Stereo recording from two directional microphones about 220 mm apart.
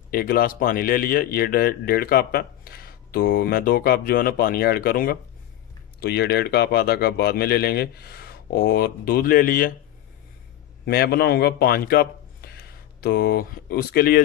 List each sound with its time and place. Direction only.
0.1 s speech: 40° left (ahead or behind)
10.9 s a man's voice: 45° left (ahead or behind)